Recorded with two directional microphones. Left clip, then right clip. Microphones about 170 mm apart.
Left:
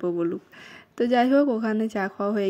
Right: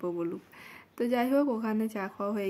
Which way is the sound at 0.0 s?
25° left (ahead or behind).